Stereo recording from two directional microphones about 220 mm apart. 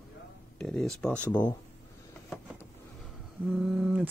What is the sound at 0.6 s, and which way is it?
Speech, 5° left (ahead or behind).